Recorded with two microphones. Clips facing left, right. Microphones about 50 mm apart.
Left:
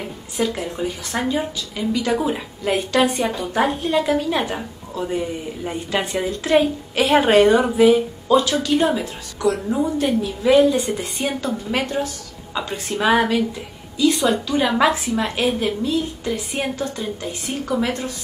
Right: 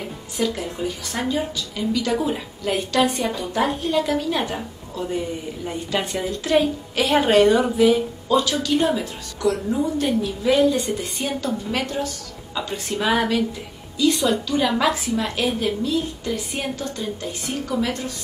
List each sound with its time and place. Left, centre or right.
0.4 s a woman's voice: left
14.5 s a woman's voice: left